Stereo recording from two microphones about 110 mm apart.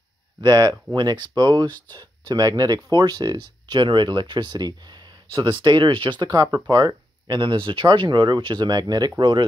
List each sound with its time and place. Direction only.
0.4 s speech: 40° right (ahead or behind)